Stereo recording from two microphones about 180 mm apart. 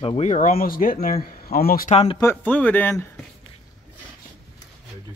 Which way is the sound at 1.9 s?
35° left (ahead or behind).